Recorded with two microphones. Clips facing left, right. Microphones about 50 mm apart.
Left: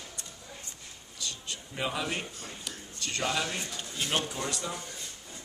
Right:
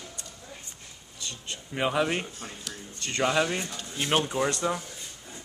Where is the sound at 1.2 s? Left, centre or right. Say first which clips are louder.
Right 1 dB; right.